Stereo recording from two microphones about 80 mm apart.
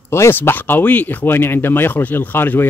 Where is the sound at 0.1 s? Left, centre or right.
Left.